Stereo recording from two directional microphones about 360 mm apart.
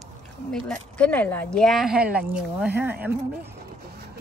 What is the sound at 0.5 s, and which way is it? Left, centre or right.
Speech, centre.